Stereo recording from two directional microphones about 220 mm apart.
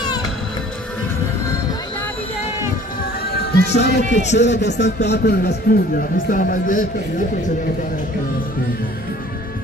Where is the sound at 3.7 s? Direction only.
50° left (ahead or behind).